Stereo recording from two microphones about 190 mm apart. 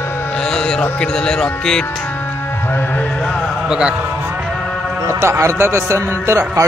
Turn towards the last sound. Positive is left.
turn(degrees=-15)  # may be behind; listen again after turning